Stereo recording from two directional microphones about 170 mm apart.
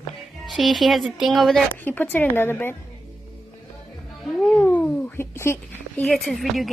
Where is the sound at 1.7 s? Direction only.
10° left (ahead or behind).